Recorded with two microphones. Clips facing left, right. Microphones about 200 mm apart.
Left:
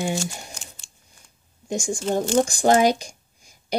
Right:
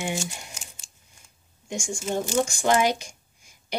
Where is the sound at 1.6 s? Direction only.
35° left (ahead or behind).